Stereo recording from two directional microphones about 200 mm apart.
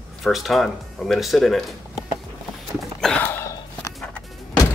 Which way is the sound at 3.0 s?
5° left (ahead or behind).